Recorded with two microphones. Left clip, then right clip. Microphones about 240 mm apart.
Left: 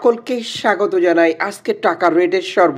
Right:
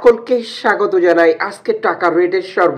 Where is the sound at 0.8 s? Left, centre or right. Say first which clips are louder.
Right 2 dB; left.